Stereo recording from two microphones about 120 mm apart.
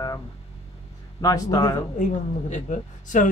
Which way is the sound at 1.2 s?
30° left (ahead or behind).